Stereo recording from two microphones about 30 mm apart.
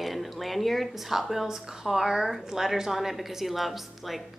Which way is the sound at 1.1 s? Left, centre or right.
Centre.